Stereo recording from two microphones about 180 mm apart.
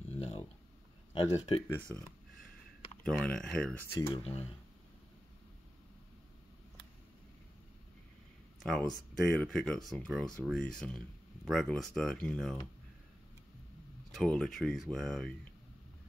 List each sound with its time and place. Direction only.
0.1 s a sound: 35° left (ahead or behind)
1.1 s speech: 30° left (ahead or behind)
1.9 s speech: 5° left (ahead or behind)
4.1 s speech: 35° left (ahead or behind)
8.6 s speech: 5° left (ahead or behind)
14.1 s speech: 5° left (ahead or behind)